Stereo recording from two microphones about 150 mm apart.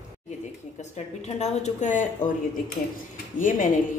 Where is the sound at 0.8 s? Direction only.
50° left (ahead or behind).